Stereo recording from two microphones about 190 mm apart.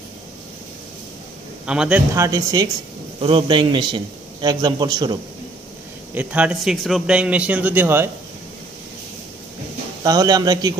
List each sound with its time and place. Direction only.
1.7 s speech: 5° right (ahead or behind)
3.2 s a man's voice: 30° right (ahead or behind)
6.1 s speech: 5° right (ahead or behind)
10.0 s a man's voice: 20° right (ahead or behind)